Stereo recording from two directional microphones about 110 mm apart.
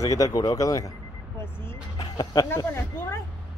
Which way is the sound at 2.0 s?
40° left (ahead or behind).